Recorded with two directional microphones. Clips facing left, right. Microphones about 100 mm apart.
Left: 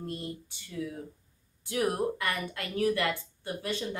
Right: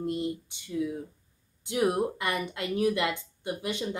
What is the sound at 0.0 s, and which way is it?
A woman's voice, 20° right (ahead or behind).